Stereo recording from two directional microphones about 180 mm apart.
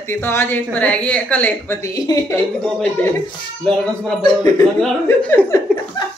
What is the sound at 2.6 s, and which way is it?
A man's voice, 5° left (ahead or behind).